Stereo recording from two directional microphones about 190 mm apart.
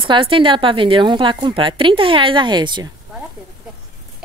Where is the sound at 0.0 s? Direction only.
25° right (ahead or behind).